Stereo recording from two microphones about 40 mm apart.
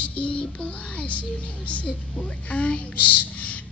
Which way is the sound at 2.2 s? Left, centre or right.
Left.